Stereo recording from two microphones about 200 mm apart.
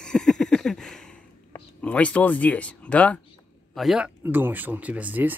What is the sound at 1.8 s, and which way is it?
Speech, 5° left (ahead or behind).